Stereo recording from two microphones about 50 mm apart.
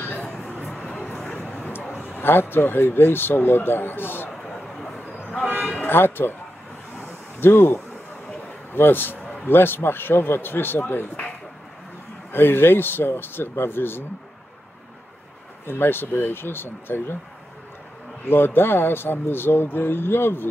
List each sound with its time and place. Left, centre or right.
0.0 s a sound: left
1.6 s vehicle: left
2.0 s speech: left
4.3 s a sound: centre
5.9 s speech: left
7.3 s speech: left
12.3 s speech: left
15.6 s speech: left
18.3 s speech: left